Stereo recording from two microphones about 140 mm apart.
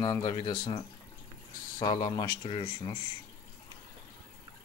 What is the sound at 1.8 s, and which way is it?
Speech, 30° left (ahead or behind).